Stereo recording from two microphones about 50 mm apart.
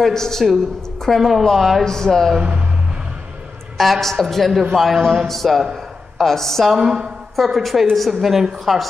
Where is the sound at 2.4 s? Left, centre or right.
Centre.